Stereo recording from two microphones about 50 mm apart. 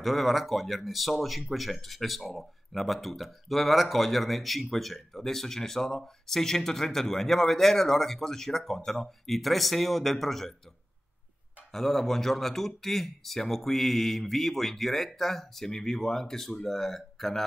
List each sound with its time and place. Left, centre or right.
0.0 s speech: centre
11.7 s speech: centre